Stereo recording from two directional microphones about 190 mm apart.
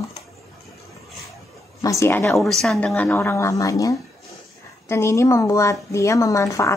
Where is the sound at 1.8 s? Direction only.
15° left (ahead or behind).